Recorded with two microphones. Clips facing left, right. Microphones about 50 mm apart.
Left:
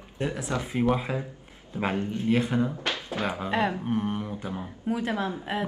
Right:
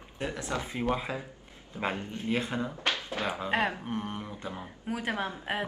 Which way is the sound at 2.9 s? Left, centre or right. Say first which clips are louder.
Left 2 dB; left.